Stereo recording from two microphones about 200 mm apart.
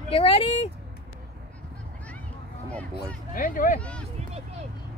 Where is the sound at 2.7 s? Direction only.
5° left (ahead or behind).